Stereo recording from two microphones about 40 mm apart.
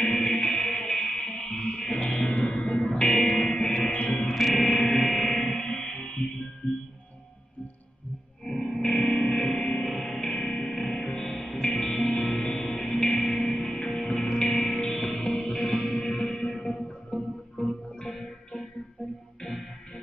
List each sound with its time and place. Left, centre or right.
0.0 s music: centre
0.9 s music: centre
1.2 s music: left
3.0 s music: centre
3.4 s music: left
3.9 s music: left
4.4 s music: centre
8.5 s music: left
10.7 s music: centre
11.5 s music: left
11.8 s music: centre
14.9 s music: centre
18.2 s music: centre